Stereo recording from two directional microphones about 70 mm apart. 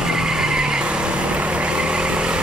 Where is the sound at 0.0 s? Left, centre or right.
Centre.